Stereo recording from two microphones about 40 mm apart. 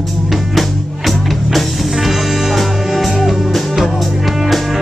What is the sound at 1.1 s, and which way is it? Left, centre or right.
Music, centre.